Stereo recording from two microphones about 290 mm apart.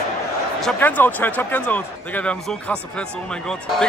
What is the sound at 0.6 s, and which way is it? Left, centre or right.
A man's voice, centre.